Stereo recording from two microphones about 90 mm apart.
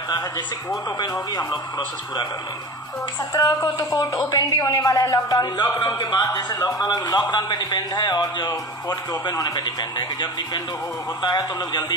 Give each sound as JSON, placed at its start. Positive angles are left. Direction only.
{"t": 0.9, "sound": "a man's voice", "side_deg": 45}
{"t": 3.3, "sound": "a man's voice", "side_deg": 45}